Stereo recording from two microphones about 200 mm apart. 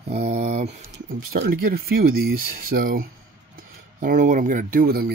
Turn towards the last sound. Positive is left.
turn(degrees=-45)  # may be behind; listen again after turning